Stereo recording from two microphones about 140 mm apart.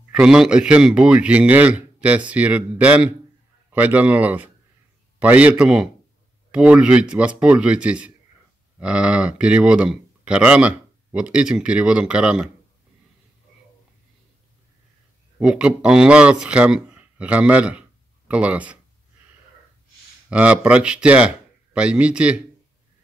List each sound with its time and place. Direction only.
0.1 s speech: 5° right (ahead or behind)
15.3 s speech: 10° right (ahead or behind)
20.2 s speech: 10° right (ahead or behind)